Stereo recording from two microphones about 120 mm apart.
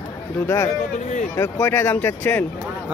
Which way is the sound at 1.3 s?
25° left (ahead or behind).